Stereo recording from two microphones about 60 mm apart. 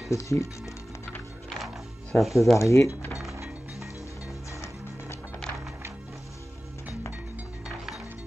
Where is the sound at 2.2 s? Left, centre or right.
Centre.